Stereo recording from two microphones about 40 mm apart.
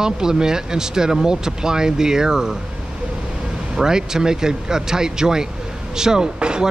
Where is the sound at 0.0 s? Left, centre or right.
Centre.